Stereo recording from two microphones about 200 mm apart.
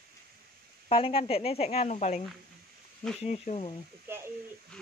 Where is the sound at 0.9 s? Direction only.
25° left (ahead or behind).